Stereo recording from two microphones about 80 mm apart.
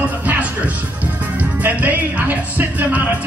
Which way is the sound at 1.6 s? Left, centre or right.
Right.